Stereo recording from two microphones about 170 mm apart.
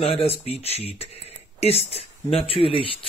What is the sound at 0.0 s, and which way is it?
Speech, 35° left (ahead or behind).